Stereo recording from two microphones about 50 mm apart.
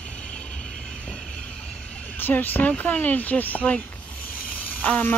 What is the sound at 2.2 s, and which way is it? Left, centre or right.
Speech, left.